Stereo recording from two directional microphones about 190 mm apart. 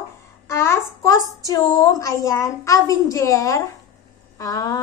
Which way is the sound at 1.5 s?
15° left (ahead or behind).